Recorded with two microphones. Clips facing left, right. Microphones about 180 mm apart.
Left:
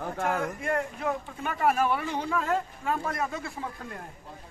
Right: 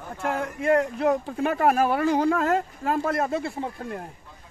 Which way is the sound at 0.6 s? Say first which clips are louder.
Right 8 dB; 70° right (ahead or behind).